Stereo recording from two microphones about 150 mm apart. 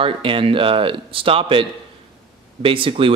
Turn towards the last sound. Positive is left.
turn(degrees=-35)  # may be behind; listen again after turning